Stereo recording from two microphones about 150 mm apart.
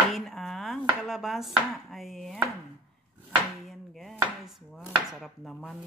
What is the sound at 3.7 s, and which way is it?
Chopping, centre (ahead or behind).